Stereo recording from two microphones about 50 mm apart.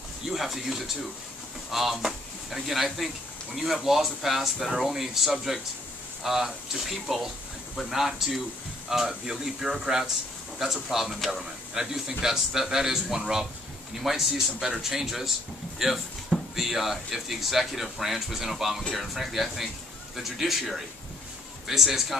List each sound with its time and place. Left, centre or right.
0.3 s a man's voice: centre